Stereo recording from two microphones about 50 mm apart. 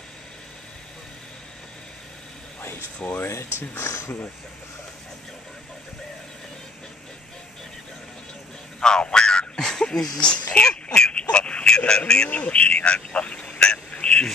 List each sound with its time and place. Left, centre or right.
3.0 s speech: left
3.8 s speech: left
8.8 s speech: centre
12.3 s a sound: left